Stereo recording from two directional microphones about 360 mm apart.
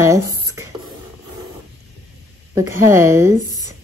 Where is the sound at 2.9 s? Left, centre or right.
Centre.